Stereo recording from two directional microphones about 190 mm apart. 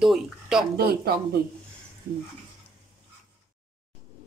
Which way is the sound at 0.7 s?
55° right (ahead or behind).